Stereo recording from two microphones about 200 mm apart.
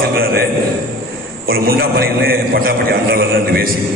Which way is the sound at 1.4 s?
50° right (ahead or behind).